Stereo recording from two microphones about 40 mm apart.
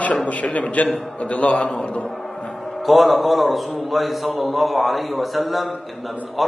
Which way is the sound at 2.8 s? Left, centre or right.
Centre.